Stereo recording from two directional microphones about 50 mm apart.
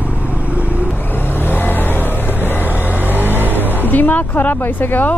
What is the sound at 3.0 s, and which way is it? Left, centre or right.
Music, right.